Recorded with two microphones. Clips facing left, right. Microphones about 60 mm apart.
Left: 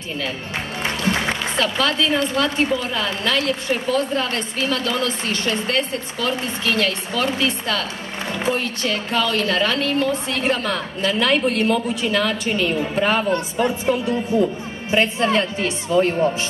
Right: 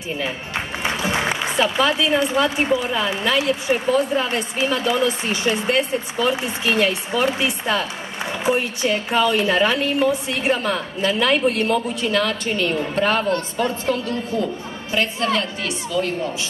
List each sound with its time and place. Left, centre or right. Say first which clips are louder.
0.8 s a woman's voice: even; centre
13.3 s a woman's voice: left 1 dB; centre; by 16.3 s left